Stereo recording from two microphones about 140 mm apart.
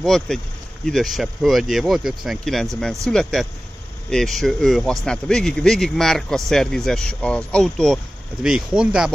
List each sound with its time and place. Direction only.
0.0 s a man's voice: centre (ahead or behind)